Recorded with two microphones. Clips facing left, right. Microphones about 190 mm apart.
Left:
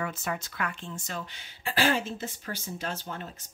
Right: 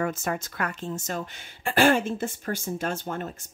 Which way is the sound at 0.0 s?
45° right (ahead or behind).